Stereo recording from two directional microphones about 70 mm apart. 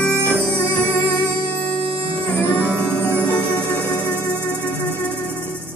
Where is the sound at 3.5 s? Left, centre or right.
Right.